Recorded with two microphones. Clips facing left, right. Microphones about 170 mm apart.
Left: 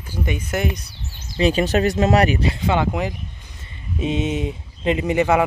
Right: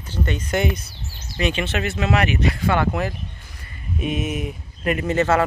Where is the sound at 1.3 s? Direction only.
35° left (ahead or behind); by 5.4 s 15° left (ahead or behind).